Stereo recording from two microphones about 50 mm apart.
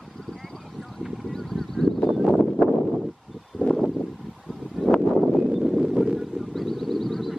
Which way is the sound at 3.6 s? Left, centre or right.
Left.